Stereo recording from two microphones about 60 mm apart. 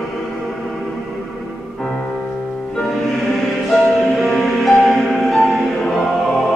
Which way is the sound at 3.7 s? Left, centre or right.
Centre.